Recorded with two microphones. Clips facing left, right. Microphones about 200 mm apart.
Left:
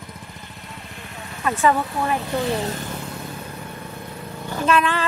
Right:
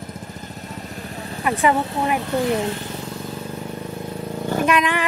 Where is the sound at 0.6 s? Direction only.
40° right (ahead or behind).